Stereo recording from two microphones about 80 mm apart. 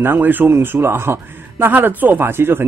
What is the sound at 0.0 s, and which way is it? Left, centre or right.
A man's voice, right.